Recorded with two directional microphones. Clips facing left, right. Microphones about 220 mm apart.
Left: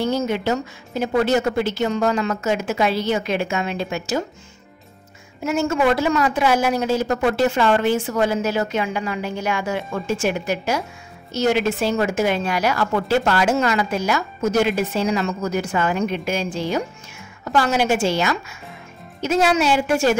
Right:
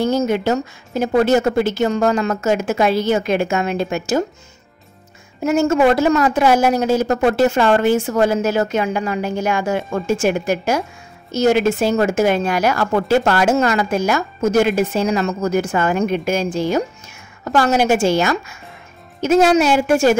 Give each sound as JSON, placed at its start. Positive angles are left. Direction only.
{"t": 0.0, "sound": "a woman's voice", "side_deg": -45}
{"t": 5.4, "sound": "a woman's voice", "side_deg": -45}